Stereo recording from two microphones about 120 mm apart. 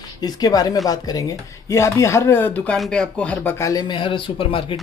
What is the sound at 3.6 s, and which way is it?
Speech, 30° left (ahead or behind).